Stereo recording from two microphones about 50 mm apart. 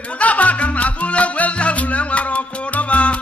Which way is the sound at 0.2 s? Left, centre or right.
Left.